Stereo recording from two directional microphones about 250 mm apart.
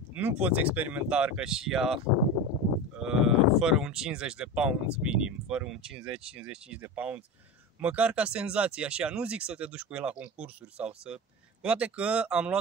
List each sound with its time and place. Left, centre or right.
0.1 s speech: centre
3.0 s speech: centre